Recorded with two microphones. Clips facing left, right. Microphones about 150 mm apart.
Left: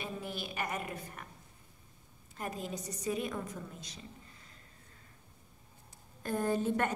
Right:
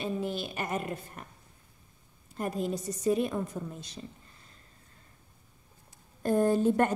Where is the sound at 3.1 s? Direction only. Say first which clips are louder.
Right 8 dB; 30° right (ahead or behind).